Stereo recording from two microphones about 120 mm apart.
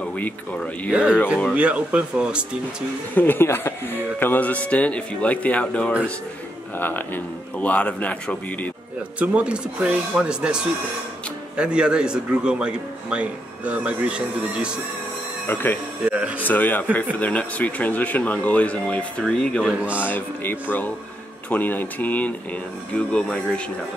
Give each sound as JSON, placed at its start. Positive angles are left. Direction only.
{"t": 0.0, "sound": "speech", "side_deg": 10}
{"t": 1.5, "sound": "a man's voice", "side_deg": -10}
{"t": 3.2, "sound": "speech", "side_deg": 20}
{"t": 9.2, "sound": "a man's voice", "side_deg": -10}
{"t": 15.4, "sound": "speech", "side_deg": 15}
{"t": 16.1, "sound": "a man's voice", "side_deg": -10}
{"t": 16.4, "sound": "speech", "side_deg": 15}
{"t": 19.6, "sound": "a man's voice", "side_deg": -10}
{"t": 20.0, "sound": "speech", "side_deg": 15}